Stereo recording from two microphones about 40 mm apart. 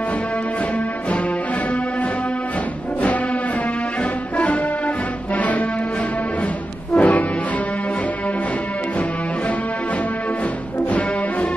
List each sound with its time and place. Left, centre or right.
5.3 s music: left
7.0 s music: left